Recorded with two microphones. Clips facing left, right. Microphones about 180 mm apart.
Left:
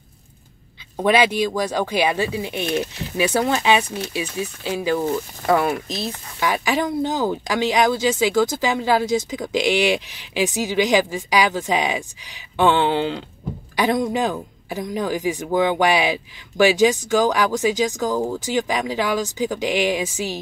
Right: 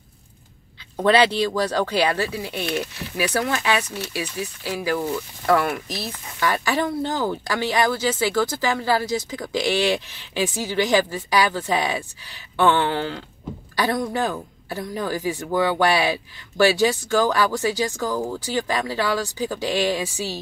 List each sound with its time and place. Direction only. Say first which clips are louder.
0.9 s speech: even; 10° left (ahead or behind)